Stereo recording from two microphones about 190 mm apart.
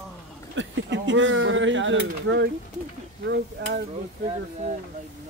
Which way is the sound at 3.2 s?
65° right (ahead or behind).